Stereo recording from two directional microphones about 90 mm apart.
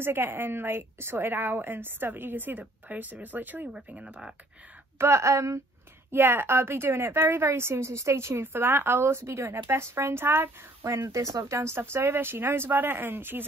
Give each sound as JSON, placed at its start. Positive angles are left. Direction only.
{"t": 0.0, "sound": "a woman's voice", "side_deg": -25}
{"t": 4.9, "sound": "speech", "side_deg": -30}
{"t": 6.1, "sound": "a woman's voice", "side_deg": -25}